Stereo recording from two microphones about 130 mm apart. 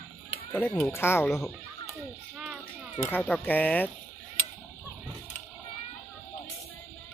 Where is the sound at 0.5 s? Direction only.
15° left (ahead or behind).